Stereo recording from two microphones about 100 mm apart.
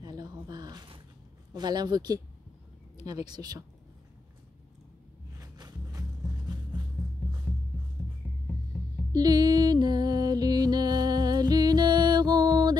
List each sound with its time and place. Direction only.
0.0 s a sound: 40° right (ahead or behind)
1.5 s speech: 45° right (ahead or behind)
5.4 s music: 40° right (ahead or behind)
8.2 s music: 15° right (ahead or behind)
9.1 s music: 40° right (ahead or behind)